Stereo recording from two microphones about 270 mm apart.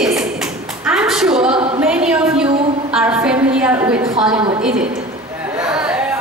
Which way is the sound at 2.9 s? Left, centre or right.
Centre.